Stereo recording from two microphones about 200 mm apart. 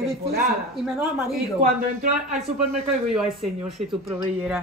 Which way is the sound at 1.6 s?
45° right (ahead or behind).